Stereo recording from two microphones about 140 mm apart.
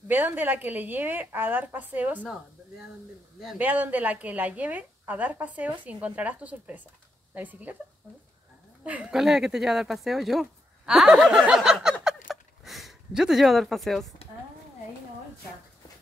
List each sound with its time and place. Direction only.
0.1 s a woman's voice: 15° right (ahead or behind)
3.5 s a woman's voice: 10° right (ahead or behind)
8.8 s speech: 10° right (ahead or behind)
10.9 s snicker: 5° right (ahead or behind)
12.3 s a sound: centre (ahead or behind)